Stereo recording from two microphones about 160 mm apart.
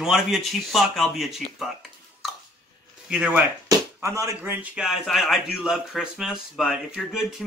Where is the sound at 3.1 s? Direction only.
5° right (ahead or behind).